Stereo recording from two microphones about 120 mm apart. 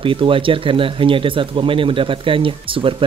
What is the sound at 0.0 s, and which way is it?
Speech, 45° right (ahead or behind).